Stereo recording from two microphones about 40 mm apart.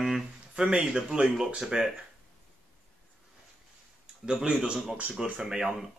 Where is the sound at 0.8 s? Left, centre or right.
Centre.